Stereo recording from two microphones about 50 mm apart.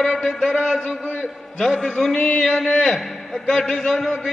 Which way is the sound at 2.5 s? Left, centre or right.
Centre.